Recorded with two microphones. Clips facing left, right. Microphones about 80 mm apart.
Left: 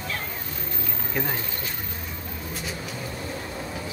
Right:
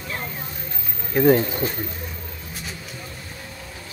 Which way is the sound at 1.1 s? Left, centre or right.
Centre.